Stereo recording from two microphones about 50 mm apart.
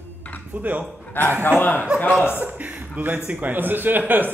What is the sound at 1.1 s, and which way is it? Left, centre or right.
Speech, left.